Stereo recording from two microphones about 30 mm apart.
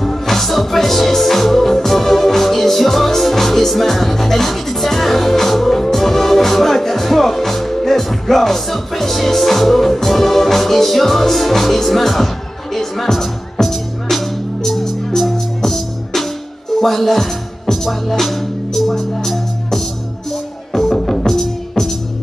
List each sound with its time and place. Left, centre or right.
0.0 s music: centre